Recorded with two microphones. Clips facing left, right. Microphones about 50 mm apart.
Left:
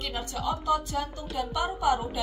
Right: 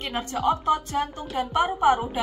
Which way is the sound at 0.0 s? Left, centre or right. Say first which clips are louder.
Right 7 dB; right.